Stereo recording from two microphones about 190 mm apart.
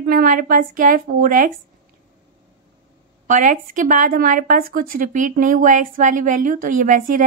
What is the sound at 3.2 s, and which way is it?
Speech, 45° right (ahead or behind).